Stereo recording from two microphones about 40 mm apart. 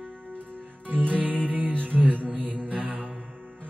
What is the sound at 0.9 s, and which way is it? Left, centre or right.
Music, right.